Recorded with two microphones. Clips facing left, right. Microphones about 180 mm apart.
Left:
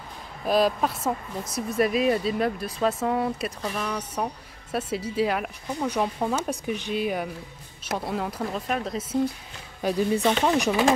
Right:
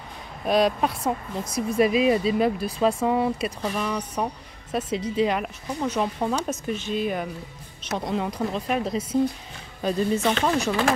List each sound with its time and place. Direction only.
0.5 s speech: centre (ahead or behind)
4.7 s speech: 10° left (ahead or behind)
10.5 s speech: 15° left (ahead or behind)